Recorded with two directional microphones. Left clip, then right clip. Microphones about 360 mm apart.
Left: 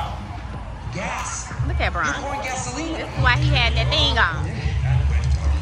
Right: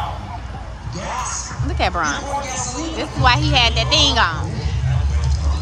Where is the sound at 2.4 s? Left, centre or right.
Left.